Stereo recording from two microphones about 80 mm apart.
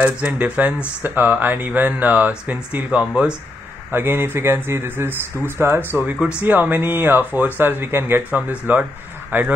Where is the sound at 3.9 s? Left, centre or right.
Right.